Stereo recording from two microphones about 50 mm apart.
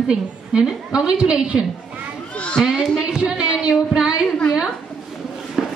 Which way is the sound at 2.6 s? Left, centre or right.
Centre.